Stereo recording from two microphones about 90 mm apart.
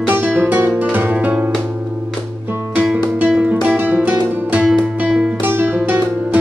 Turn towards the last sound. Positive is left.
turn(degrees=-20)  # may be behind; listen again after turning